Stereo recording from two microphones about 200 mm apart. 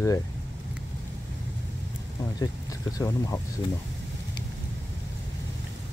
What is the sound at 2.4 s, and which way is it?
Speech, 15° left (ahead or behind).